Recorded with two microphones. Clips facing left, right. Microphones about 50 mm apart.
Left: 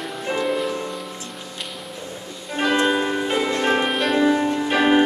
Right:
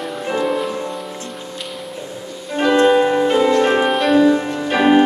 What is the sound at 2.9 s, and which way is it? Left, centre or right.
Music, centre.